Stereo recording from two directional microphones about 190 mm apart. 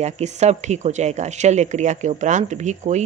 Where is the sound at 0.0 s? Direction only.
35° right (ahead or behind).